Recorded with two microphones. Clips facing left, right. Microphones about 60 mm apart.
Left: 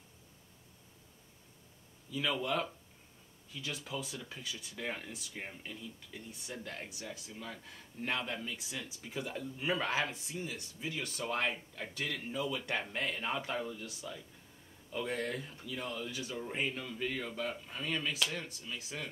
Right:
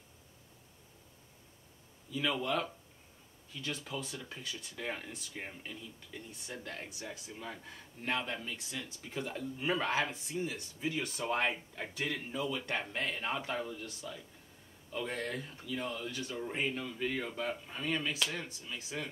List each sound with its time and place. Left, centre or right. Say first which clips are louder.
2.1 s speech: right 1 dB; centre
7.0 s a man's voice: right 1 dB; centre
8.0 s speech: right 1 dB; centre
10.3 s a man's voice: right 4 dB; centre
12.3 s a man's voice: even; centre